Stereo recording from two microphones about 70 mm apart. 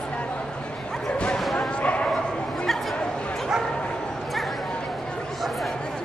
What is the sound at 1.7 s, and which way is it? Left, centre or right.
Bow-wow, centre.